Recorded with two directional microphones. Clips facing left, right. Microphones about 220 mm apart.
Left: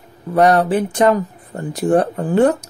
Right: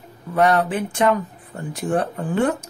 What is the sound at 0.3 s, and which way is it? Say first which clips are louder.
Speech: left 5 dB; 35° left (ahead or behind).